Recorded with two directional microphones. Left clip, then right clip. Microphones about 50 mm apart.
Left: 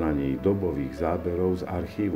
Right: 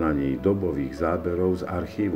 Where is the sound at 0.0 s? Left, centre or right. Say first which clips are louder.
Right 2 dB; centre.